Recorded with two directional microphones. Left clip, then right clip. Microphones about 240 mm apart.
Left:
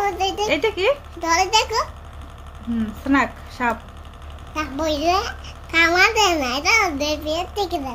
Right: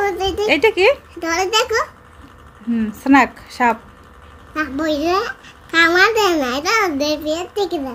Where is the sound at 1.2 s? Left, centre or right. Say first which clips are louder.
Right 1 dB; centre.